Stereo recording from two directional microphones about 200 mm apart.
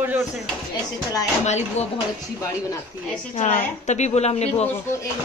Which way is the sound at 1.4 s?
35° left (ahead or behind).